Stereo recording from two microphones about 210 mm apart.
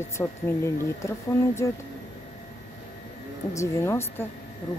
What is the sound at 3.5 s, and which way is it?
Speech, 15° left (ahead or behind).